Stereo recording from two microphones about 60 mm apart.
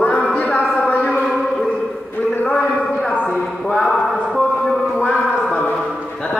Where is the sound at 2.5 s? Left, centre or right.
Centre.